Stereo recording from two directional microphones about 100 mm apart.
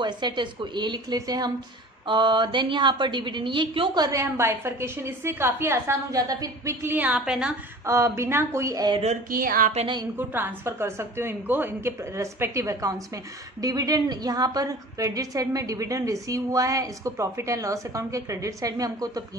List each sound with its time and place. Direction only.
0.0 s a woman's voice: 50° right (ahead or behind)
2.0 s a woman's voice: 50° right (ahead or behind)
4.1 s a woman's voice: 25° right (ahead or behind); by 7.5 s 10° right (ahead or behind)
7.8 s a woman's voice: 30° right (ahead or behind)
9.8 s a woman's voice: 90° right
10.1 s a woman's voice: 20° right (ahead or behind); by 19.2 s 40° right (ahead or behind)